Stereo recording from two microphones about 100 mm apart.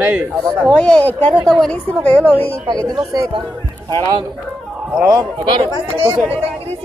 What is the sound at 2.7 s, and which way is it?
Speech, 40° right (ahead or behind).